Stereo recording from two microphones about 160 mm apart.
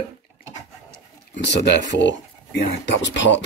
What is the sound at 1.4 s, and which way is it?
Speech, 90° left.